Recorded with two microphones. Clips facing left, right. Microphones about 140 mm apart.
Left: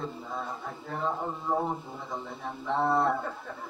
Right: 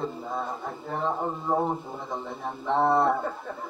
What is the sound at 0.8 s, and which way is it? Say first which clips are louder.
Speech: right 3 dB; 20° right (ahead or behind).